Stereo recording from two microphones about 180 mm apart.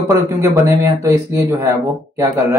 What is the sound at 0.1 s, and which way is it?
Speech, 15° right (ahead or behind).